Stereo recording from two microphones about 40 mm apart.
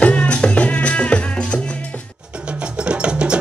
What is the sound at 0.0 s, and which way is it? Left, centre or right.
Music, left.